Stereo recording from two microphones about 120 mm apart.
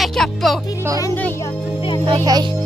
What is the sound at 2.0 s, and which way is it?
Speech, 35° right (ahead or behind).